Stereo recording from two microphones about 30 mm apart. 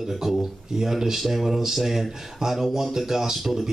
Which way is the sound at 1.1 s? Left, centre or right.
Centre.